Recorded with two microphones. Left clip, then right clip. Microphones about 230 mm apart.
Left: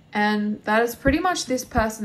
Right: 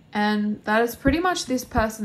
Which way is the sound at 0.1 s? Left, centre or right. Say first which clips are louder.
Left 1 dB; right.